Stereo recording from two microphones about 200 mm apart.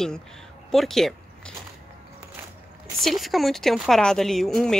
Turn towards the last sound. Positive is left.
turn(degrees=0)  # may be behind; listen again after turning